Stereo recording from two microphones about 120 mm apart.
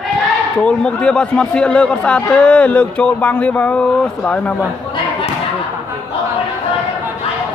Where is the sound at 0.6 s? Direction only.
10° left (ahead or behind).